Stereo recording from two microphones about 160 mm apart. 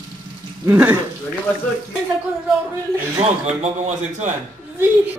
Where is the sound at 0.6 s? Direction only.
15° right (ahead or behind).